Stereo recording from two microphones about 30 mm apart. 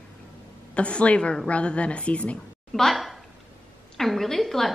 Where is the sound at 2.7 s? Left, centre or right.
Centre.